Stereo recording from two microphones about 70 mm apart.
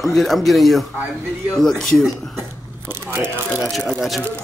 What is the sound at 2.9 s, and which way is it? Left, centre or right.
Speech, right.